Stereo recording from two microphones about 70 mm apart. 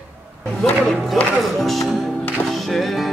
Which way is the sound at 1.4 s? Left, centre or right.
Centre.